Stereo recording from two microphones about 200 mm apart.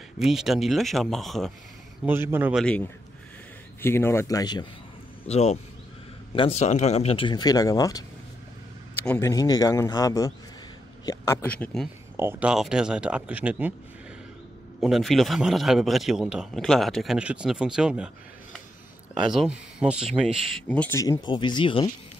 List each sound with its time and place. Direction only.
0.2 s a man's voice: centre (ahead or behind)
2.0 s a man's voice: 10° right (ahead or behind)
3.8 s speech: 10° left (ahead or behind)
5.3 s speech: 30° left (ahead or behind); by 11.9 s 5° left (ahead or behind)
12.2 s a man's voice: 10° right (ahead or behind)
14.8 s a man's voice: centre (ahead or behind)
19.2 s speech: 5° right (ahead or behind); by 21.8 s 25° left (ahead or behind)